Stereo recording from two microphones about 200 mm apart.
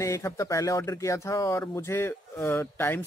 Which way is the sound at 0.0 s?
15° left (ahead or behind).